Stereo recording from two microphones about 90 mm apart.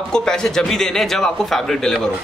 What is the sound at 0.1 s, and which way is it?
A man's voice, 10° left (ahead or behind).